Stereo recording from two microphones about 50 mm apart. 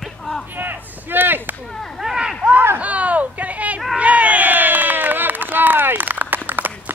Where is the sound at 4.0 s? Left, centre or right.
Right.